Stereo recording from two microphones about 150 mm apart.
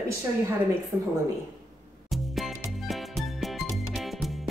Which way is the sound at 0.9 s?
15° right (ahead or behind).